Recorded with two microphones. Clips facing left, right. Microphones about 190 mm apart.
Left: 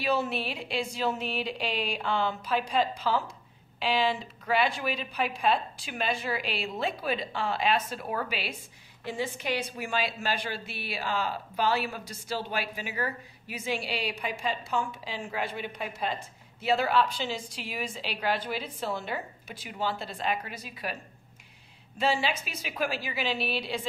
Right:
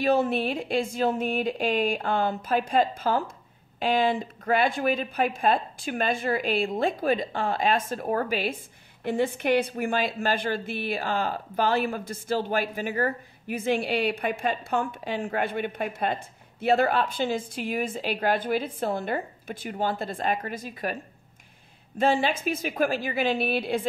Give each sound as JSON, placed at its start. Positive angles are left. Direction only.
{"t": 0.0, "sound": "a woman's voice", "side_deg": -50}